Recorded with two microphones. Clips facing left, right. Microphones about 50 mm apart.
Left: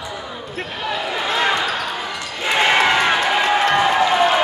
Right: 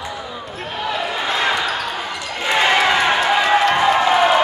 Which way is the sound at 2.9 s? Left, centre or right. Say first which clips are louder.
Right 1 dB; centre.